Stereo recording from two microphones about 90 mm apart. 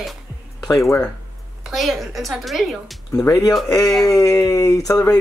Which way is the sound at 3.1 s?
30° left (ahead or behind).